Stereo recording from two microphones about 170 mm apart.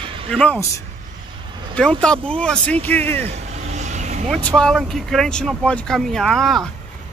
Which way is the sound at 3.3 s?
40° right (ahead or behind).